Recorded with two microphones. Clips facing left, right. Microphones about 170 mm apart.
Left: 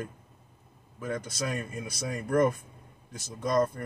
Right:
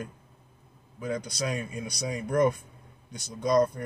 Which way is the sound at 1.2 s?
5° left (ahead or behind).